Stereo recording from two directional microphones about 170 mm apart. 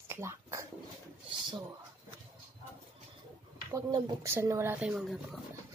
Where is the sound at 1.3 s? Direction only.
25° right (ahead or behind).